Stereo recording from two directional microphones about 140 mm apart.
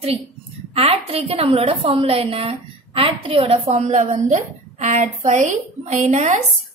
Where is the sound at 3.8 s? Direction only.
60° right (ahead or behind).